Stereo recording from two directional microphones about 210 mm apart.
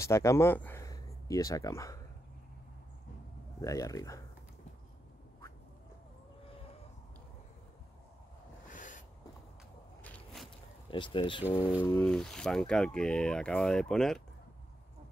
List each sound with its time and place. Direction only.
0.0 s speech: 15° left (ahead or behind)
3.6 s speech: 15° left (ahead or behind)
8.6 s snort: 40° left (ahead or behind)
10.0 s walk: 5° left (ahead or behind)
10.9 s speech: 25° left (ahead or behind)
11.8 s speech: 5° left (ahead or behind)